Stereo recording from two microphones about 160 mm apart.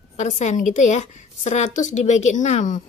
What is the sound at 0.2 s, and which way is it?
A woman's voice, 50° left (ahead or behind).